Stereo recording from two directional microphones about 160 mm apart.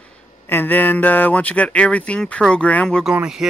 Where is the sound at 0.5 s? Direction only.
10° left (ahead or behind).